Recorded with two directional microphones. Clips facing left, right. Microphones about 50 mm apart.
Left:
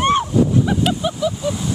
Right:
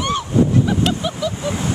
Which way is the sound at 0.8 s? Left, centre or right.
Centre.